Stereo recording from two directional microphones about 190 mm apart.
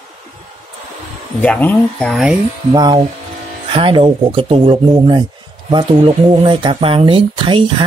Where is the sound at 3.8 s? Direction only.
25° right (ahead or behind).